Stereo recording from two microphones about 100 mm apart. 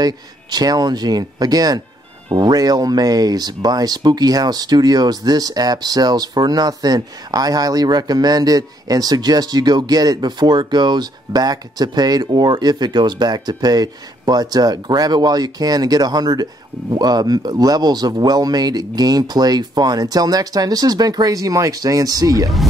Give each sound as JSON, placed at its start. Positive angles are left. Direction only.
{"t": 0.0, "sound": "speech", "side_deg": -40}